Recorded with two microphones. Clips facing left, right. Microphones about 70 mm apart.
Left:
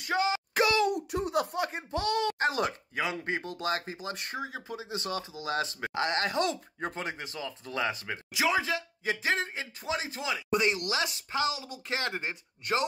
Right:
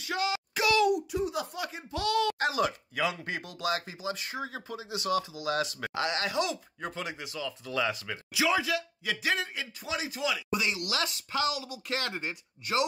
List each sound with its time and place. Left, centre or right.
0.0 s a sound: left
1.1 s speech: left
2.0 s speech: left
4.4 s speech: centre
4.7 s speech: left
10.5 s speech: left
10.9 s speech: left